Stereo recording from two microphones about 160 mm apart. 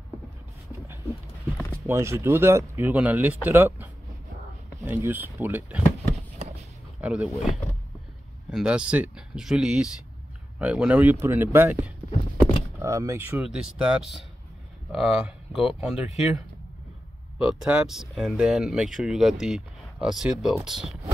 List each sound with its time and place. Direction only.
1.9 s speech: 15° right (ahead or behind)
7.0 s speech: 5° right (ahead or behind)
13.4 s speech: 5° right (ahead or behind)